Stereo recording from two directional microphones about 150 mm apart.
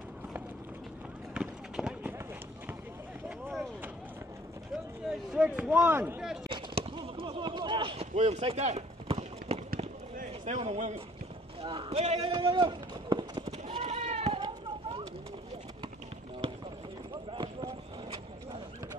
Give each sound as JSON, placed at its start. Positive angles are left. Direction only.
{"t": 1.3, "sound": "run", "side_deg": -5}
{"t": 3.3, "sound": "vehicle", "side_deg": -5}
{"t": 5.3, "sound": "speech", "side_deg": -5}
{"t": 6.5, "sound": "a sound", "side_deg": -40}
{"t": 11.6, "sound": "speech", "side_deg": -35}
{"t": 12.3, "sound": "run", "side_deg": -35}
{"t": 13.5, "sound": "goat", "side_deg": -45}
{"t": 16.4, "sound": "a sound", "side_deg": -40}